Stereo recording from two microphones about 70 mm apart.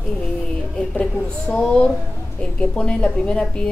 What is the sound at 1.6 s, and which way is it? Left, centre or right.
A woman's voice, centre.